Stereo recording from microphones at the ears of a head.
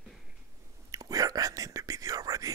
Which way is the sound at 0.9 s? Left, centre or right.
Right.